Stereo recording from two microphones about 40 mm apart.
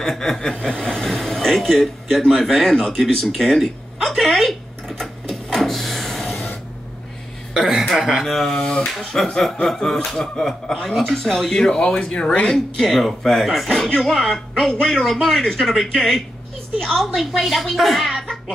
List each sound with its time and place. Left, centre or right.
0.0 s speech: centre
3.3 s a sound: centre
7.9 s a woman's voice: centre
8.5 s speech: centre
8.9 s a woman's voice: centre
11.9 s speech: left
12.4 s a woman's voice: centre